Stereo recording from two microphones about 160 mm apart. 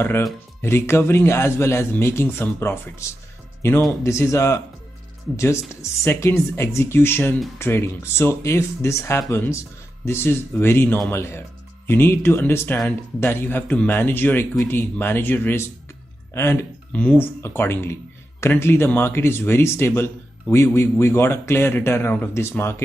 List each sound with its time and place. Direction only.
0.0 s speech: 15° left (ahead or behind)